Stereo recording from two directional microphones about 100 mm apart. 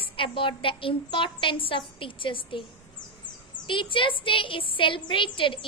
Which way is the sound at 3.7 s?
55° left (ahead or behind).